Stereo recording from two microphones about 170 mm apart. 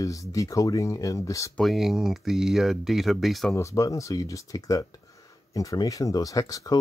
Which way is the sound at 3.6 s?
20° left (ahead or behind).